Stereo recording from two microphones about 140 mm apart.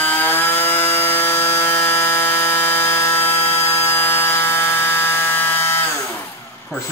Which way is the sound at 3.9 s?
15° left (ahead or behind).